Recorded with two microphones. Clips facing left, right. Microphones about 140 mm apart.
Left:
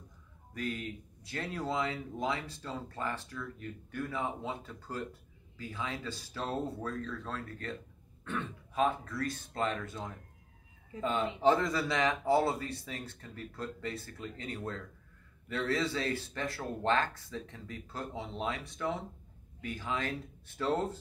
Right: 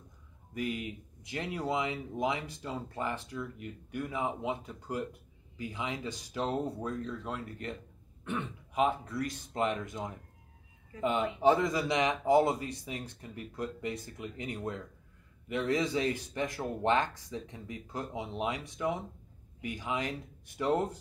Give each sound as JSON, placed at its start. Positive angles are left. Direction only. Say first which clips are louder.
{"t": 0.6, "sound": "speech", "louder": "right 2 dB", "side_deg": -15}